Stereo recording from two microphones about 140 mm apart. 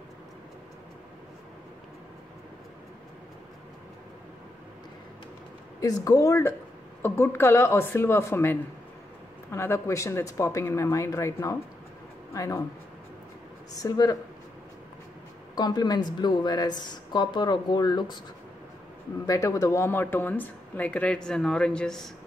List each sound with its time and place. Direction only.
5.8 s speech: 25° left (ahead or behind)
13.7 s speech: 25° left (ahead or behind)
15.5 s speech: 30° left (ahead or behind)
19.2 s speech: 25° left (ahead or behind); by 22.1 s 5° left (ahead or behind)